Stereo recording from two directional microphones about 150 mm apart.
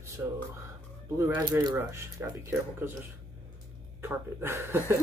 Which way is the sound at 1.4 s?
30° right (ahead or behind).